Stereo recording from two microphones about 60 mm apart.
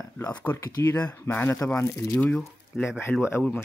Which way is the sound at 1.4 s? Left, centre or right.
Left.